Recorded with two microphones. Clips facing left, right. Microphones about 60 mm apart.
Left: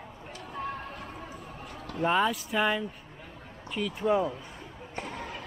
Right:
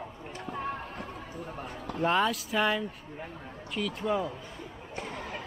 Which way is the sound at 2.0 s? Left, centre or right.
Centre.